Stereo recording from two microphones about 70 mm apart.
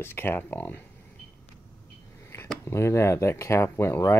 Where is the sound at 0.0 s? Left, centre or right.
Left.